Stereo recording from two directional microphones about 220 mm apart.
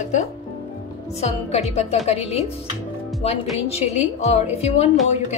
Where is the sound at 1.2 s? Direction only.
30° left (ahead or behind).